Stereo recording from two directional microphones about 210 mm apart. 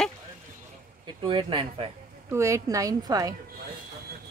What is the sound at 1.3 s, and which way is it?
Speech, 25° right (ahead or behind).